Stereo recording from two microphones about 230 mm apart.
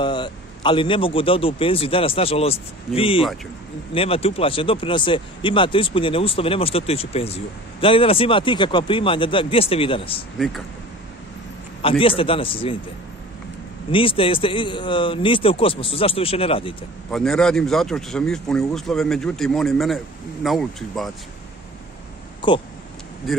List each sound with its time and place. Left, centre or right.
0.0 s speech: left
11.8 s speech: left
13.9 s speech: left
17.1 s speech: centre
22.4 s speech: left